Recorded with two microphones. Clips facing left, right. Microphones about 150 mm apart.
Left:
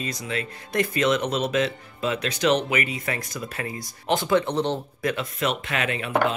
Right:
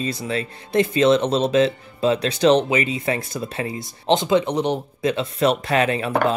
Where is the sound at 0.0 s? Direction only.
30° right (ahead or behind).